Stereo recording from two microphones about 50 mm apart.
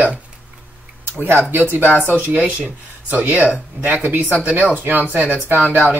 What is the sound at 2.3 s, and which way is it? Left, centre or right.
Speech, right.